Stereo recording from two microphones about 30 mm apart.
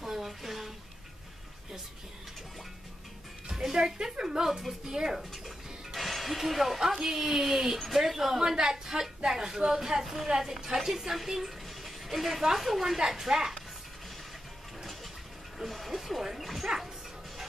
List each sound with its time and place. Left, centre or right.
0.0 s a sound: centre
3.7 s a woman's voice: right
4.5 s speech: centre
4.8 s a woman's voice: centre
5.3 s music: centre
7.0 s a woman's voice: centre
10.9 s a woman's voice: centre
13.3 s a woman's voice: right
15.6 s music: centre
16.6 s dog: centre